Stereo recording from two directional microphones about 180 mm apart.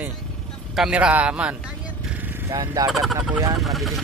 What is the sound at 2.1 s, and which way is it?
Vehicle, 10° right (ahead or behind).